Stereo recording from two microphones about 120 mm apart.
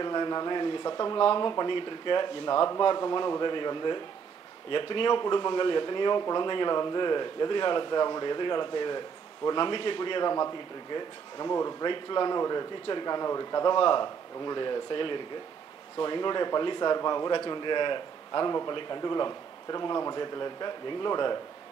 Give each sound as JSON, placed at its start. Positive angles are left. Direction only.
{"t": 0.0, "sound": "a man's voice", "side_deg": 35}
{"t": 11.9, "sound": "speech", "side_deg": 40}